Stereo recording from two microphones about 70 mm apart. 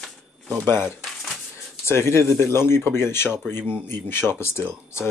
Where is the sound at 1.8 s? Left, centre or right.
Left.